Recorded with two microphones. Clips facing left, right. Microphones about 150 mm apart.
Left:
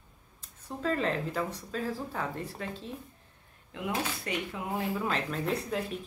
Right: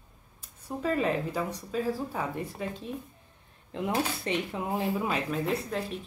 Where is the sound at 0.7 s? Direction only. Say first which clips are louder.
Right 2 dB; 10° right (ahead or behind).